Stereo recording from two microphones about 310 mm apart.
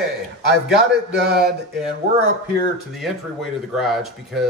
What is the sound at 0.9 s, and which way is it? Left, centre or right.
Speech, right.